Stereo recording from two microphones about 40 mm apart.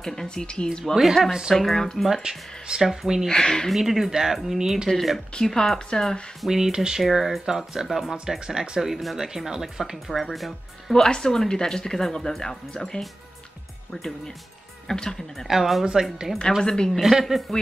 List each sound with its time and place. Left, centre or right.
0.0 s speech: centre
0.9 s speech: centre
2.2 s speech: centre
3.3 s speech: centre
3.7 s speech: centre
4.8 s speech: centre
5.3 s speech: centre
6.4 s speech: centre
7.0 s speech: centre
11.0 s speech: centre
14.9 s speech: centre
15.4 s speech: centre
16.6 s speech: centre
17.0 s speech: centre